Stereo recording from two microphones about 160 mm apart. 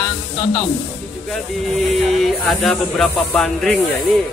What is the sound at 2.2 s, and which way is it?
Speech, centre (ahead or behind).